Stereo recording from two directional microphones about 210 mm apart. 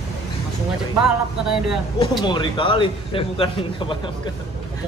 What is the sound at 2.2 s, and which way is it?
A man's voice, 20° left (ahead or behind).